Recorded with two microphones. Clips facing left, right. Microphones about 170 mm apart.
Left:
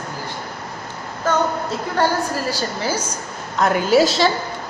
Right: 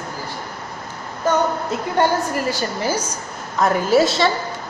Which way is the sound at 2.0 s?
20° right (ahead or behind).